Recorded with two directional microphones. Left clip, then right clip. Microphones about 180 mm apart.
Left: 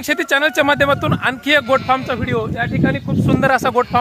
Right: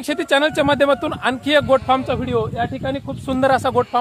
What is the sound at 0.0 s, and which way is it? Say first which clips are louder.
Speech: left 2 dB; 10° left (ahead or behind).